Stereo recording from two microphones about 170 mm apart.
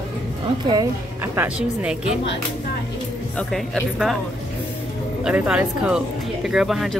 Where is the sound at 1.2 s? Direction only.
10° right (ahead or behind).